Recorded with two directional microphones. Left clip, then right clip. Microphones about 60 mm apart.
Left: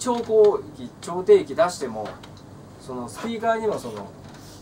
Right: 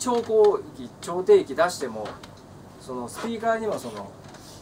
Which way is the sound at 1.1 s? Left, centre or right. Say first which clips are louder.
Left 1 dB; centre.